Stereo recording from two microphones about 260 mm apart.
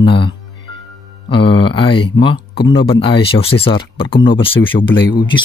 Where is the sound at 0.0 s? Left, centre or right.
Centre.